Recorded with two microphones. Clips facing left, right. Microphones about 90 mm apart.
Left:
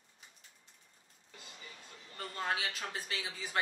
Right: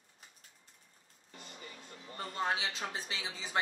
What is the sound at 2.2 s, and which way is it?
Speech, 20° right (ahead or behind).